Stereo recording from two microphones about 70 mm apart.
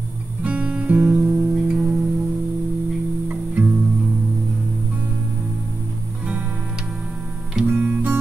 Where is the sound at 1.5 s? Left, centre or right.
Centre.